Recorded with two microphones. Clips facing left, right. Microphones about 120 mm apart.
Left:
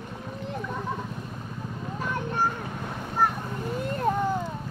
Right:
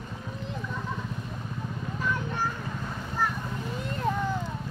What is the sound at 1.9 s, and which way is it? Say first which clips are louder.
Splash: left 2 dB; 50° left (ahead or behind).